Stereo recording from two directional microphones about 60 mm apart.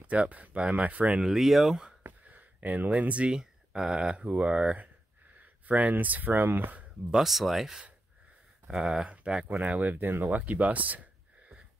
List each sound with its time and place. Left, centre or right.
0.0 s speech: right
1.2 s speech: centre
2.2 s speech: right
3.3 s speech: centre; by 6.9 s right
7.1 s speech: centre; by 10.4 s right
10.4 s a sound: right